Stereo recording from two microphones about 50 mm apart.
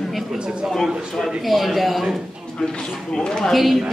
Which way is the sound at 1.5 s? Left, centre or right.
Centre.